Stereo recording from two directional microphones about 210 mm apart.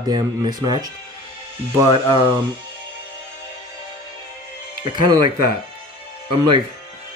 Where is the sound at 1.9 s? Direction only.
20° right (ahead or behind).